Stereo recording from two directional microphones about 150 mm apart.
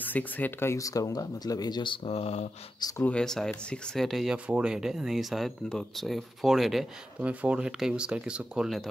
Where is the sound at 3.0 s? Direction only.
5° left (ahead or behind).